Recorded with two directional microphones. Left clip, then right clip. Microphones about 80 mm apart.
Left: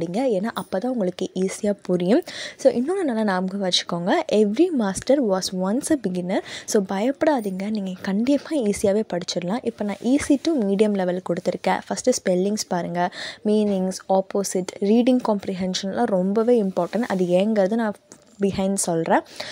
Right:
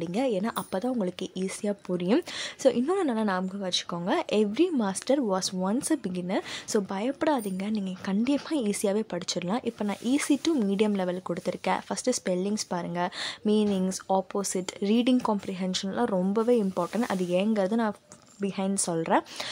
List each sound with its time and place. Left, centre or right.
0.0 s a woman's voice: left
1.2 s a woman's voice: left
2.1 s speech: left
3.3 s a woman's voice: left
7.2 s a woman's voice: left
12.4 s a woman's voice: left
15.2 s a woman's voice: left
17.5 s a woman's voice: left
18.4 s speech: left
18.7 s a woman's voice: left